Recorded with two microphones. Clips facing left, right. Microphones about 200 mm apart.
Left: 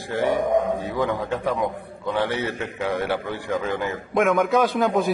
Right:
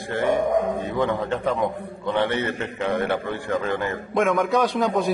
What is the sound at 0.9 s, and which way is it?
A man's voice, centre (ahead or behind).